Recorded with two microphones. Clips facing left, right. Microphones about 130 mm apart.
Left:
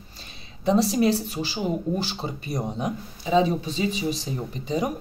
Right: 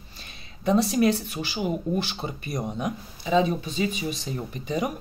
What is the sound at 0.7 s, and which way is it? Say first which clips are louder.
Speech: left 1 dB; 30° left (ahead or behind).